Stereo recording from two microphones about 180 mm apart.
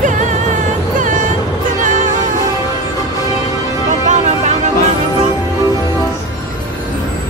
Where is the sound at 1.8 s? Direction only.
45° right (ahead or behind).